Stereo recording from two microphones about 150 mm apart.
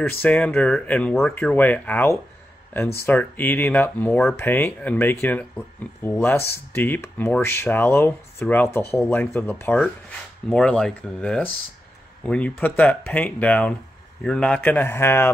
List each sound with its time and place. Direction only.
0.2 s speech: 10° left (ahead or behind)